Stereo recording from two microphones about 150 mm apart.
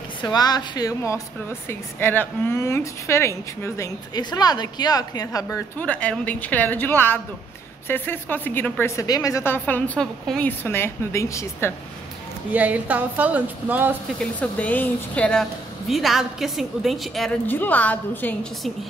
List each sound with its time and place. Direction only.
0.2 s speech: 30° left (ahead or behind)
5.8 s a woman's voice: 10° left (ahead or behind)
10.6 s a woman's voice: 15° left (ahead or behind)
12.5 s a woman's voice: 10° right (ahead or behind)
14.4 s a woman's voice: 10° left (ahead or behind)
17.5 s a woman's voice: 10° left (ahead or behind)